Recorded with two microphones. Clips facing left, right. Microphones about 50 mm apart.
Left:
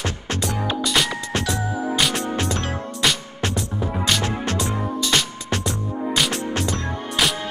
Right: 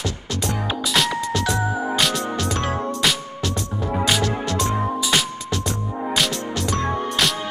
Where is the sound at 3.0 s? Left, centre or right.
Centre.